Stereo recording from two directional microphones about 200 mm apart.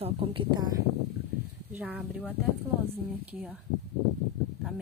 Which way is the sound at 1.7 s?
5° right (ahead or behind).